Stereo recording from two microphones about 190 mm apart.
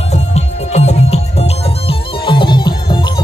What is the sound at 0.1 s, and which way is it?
Music, 35° left (ahead or behind).